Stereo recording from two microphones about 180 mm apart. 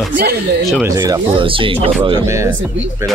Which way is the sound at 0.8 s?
20° right (ahead or behind).